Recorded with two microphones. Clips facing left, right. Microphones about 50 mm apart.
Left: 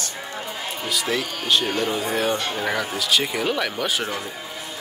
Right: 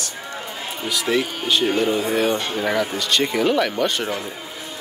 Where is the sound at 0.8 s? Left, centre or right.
Centre.